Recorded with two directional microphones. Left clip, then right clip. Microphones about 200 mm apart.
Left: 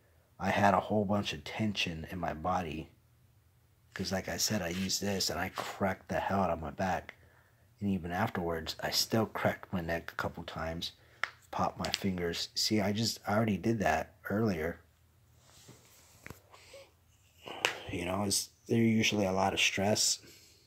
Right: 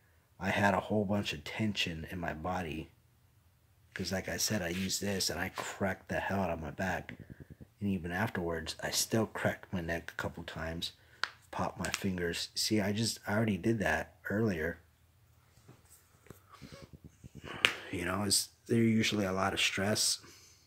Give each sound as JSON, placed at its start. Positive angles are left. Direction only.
{"t": 0.4, "sound": "speech", "side_deg": -10}
{"t": 3.9, "sound": "speech", "side_deg": -10}
{"t": 17.4, "sound": "a sound", "side_deg": -15}
{"t": 17.9, "sound": "speech", "side_deg": -10}